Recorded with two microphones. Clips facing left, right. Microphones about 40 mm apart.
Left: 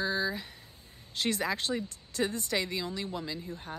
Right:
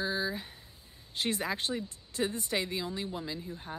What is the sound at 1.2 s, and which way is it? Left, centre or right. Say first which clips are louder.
Speech: left 2 dB; right.